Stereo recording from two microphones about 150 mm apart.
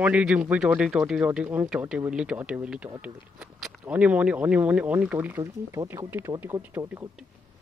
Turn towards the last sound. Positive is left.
turn(degrees=-15)  # may be behind; listen again after turning